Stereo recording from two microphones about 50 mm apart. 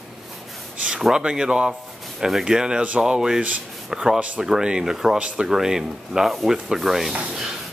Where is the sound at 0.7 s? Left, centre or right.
Centre.